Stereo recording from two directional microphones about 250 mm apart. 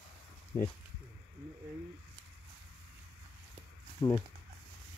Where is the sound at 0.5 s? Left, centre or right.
Left.